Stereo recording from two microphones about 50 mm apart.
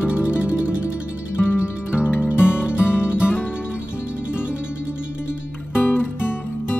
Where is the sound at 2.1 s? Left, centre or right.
Left.